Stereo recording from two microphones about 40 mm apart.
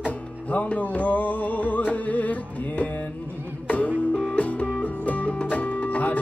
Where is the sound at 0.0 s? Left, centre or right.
Left.